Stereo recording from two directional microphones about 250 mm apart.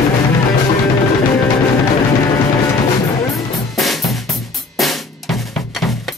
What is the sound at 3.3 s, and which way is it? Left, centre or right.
Drum kit, centre.